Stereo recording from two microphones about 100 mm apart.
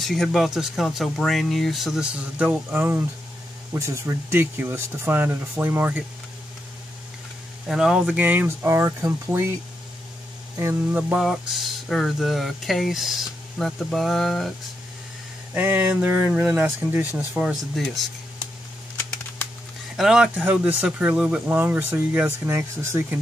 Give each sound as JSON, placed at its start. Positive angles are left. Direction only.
{"t": 0.0, "sound": "speech", "side_deg": 0}
{"t": 2.1, "sound": "speech", "side_deg": -10}
{"t": 7.6, "sound": "speech", "side_deg": -5}
{"t": 8.6, "sound": "speech", "side_deg": -25}
{"t": 10.6, "sound": "speech", "side_deg": -20}
{"t": 15.5, "sound": "speech", "side_deg": -20}
{"t": 17.1, "sound": "speech", "side_deg": -5}
{"t": 20.0, "sound": "speech", "side_deg": -5}